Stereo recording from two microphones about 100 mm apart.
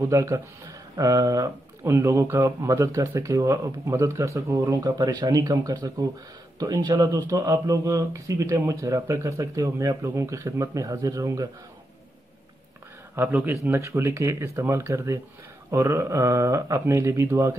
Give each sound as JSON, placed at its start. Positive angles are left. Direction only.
{"t": 0.0, "sound": "speech", "side_deg": -30}
{"t": 13.1, "sound": "speech", "side_deg": -20}